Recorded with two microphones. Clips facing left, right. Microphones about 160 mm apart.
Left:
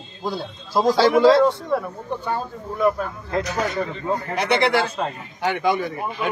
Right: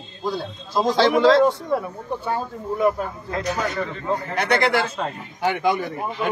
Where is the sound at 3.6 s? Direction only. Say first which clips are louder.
Left 1 dB; 15° left (ahead or behind).